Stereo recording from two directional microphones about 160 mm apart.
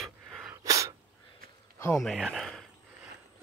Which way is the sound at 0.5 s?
20° right (ahead or behind).